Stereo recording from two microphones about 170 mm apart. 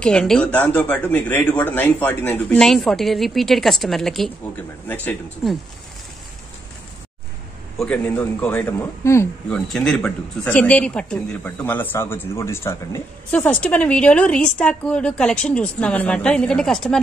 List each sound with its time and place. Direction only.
0.0 s speech: 5° left (ahead or behind)
7.7 s speech: 5° left (ahead or behind)
9.7 s speech: centre (ahead or behind)
13.3 s speech: 5° left (ahead or behind)